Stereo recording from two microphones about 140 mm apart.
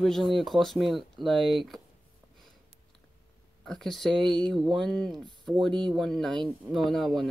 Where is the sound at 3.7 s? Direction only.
Centre (ahead or behind).